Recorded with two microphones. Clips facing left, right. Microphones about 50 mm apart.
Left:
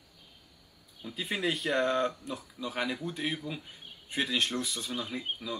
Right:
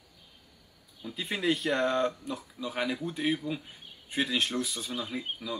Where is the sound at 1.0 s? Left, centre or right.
Centre.